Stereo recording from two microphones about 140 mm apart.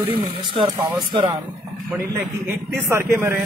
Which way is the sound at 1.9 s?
15° right (ahead or behind).